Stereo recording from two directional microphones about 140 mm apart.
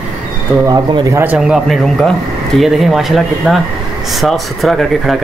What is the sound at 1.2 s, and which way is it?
Speech, 10° right (ahead or behind).